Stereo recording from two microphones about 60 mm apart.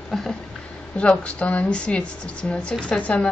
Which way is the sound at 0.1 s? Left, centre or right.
Centre.